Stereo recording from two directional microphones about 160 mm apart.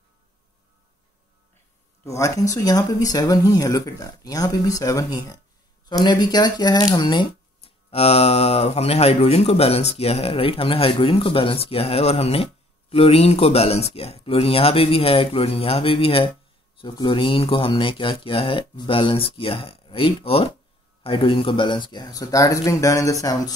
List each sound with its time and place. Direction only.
2.0 s speech: 20° left (ahead or behind)